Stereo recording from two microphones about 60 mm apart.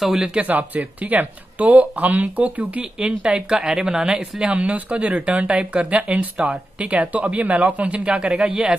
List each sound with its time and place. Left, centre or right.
0.0 s speech: centre
0.4 s speech: right; by 4.5 s centre
4.5 s speech: right